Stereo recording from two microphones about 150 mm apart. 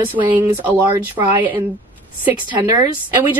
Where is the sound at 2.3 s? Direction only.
25° right (ahead or behind).